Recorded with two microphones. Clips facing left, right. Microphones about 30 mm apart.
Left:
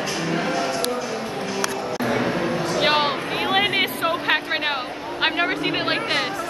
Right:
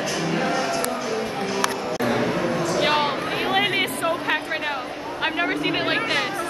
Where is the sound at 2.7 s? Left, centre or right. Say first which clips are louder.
Left 2 dB; centre.